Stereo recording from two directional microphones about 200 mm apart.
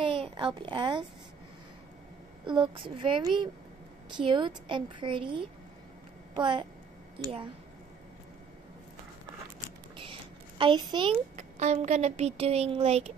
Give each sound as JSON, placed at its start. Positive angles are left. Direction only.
{"t": 0.0, "sound": "a child's voice", "side_deg": -25}
{"t": 2.4, "sound": "a woman's voice", "side_deg": -25}
{"t": 10.6, "sound": "a woman's voice", "side_deg": -25}
{"t": 11.3, "sound": "a woman's voice", "side_deg": -35}